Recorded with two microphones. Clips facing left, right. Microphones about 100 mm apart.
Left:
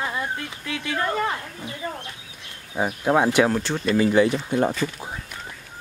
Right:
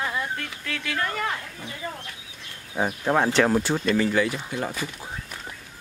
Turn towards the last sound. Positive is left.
turn(degrees=30)  # may be behind; listen again after turning